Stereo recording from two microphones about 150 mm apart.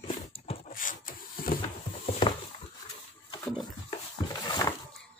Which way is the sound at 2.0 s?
45° left (ahead or behind).